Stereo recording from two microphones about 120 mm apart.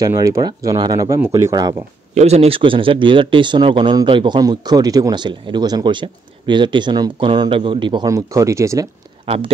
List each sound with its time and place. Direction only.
0.0 s speech: 25° right (ahead or behind)
2.1 s speech: 65° right (ahead or behind); by 8.1 s 40° right (ahead or behind)
8.1 s speech: 25° right (ahead or behind)